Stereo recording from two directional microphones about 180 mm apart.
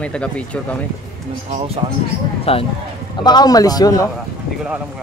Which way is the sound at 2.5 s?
35° left (ahead or behind).